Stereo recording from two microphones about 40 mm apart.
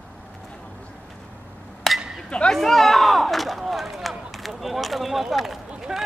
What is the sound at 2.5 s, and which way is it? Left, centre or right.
Speech, centre.